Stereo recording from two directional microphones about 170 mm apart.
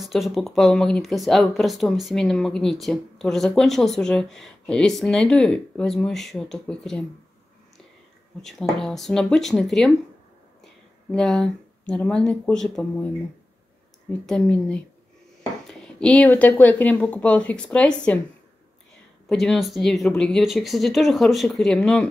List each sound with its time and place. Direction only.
0.0 s speech: centre (ahead or behind)
8.4 s speech: 5° left (ahead or behind)
10.6 s a sound: 5° left (ahead or behind)
11.9 s speech: 5° left (ahead or behind)
14.2 s speech: 5° left (ahead or behind)
19.2 s speech: 5° left (ahead or behind)